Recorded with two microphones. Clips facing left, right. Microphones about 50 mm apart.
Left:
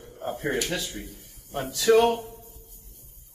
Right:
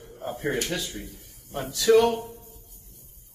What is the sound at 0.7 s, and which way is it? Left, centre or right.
Speech, centre.